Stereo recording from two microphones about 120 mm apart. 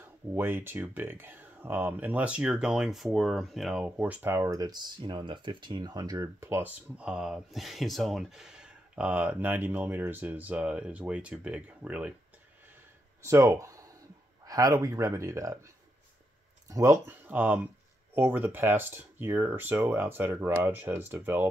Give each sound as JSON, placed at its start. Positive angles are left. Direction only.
{"t": 0.0, "sound": "speech", "side_deg": -20}
{"t": 7.0, "sound": "speech", "side_deg": -5}
{"t": 13.2, "sound": "a man's voice", "side_deg": -25}